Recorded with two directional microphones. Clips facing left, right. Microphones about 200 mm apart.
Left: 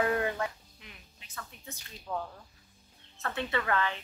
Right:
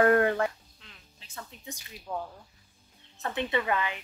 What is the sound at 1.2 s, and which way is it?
Speech, 25° right (ahead or behind).